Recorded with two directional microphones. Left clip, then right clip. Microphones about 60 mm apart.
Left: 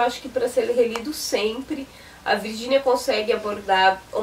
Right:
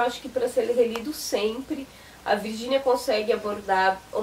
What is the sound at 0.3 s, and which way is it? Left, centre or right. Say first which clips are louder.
Speech: left 2 dB; centre.